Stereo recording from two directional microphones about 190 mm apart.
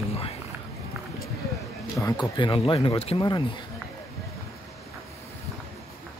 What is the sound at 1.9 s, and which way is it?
Speech, 15° left (ahead or behind).